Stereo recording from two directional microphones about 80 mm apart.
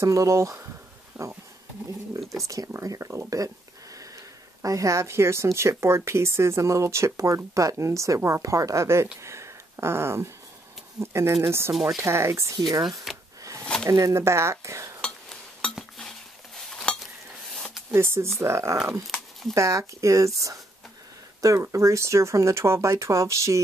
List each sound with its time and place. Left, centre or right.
0.0 s speech: right
1.1 s a sound: centre
2.4 s speech: right
4.6 s speech: right
13.1 s wood: centre
13.8 s speech: right
15.0 s a sound: centre
15.7 s cutlery: centre
17.6 s a sound: centre
17.9 s speech: right
19.0 s a sound: centre
19.5 s speech: right